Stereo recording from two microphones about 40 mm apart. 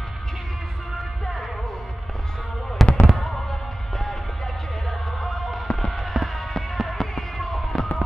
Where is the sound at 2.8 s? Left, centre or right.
Centre.